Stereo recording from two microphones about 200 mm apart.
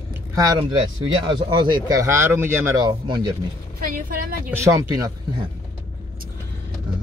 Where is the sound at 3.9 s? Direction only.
45° right (ahead or behind).